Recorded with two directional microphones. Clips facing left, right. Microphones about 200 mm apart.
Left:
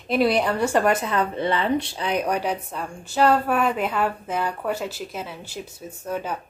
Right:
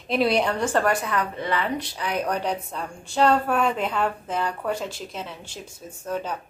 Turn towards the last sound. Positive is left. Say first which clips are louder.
# left 1 dB
turn(degrees=10)  # may be behind; listen again after turning